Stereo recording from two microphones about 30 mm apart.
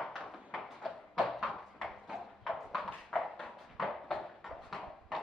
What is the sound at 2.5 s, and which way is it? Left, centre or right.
Clip-clop, centre.